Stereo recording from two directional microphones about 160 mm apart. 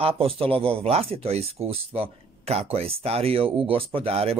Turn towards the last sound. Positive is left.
turn(degrees=-40)  # may be behind; listen again after turning